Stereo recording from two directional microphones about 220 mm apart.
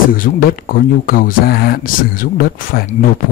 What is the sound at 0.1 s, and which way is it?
Speech, 40° left (ahead or behind).